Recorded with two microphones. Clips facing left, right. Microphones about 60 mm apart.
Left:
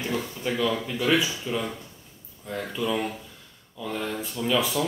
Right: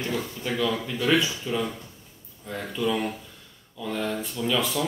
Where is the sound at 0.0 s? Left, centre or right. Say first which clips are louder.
Left 1 dB; centre.